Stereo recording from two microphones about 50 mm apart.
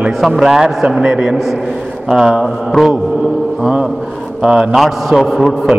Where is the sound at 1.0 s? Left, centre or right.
Right.